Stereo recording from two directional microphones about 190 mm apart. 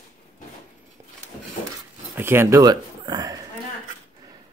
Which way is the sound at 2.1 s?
10° right (ahead or behind).